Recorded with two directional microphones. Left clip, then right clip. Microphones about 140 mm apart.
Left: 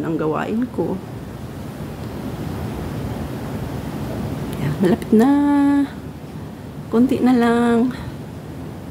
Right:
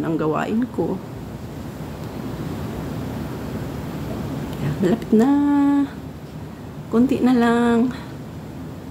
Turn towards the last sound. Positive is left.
turn(degrees=5)  # may be behind; listen again after turning